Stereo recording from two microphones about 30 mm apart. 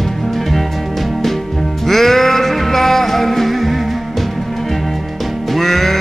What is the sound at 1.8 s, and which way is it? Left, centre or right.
Music, centre.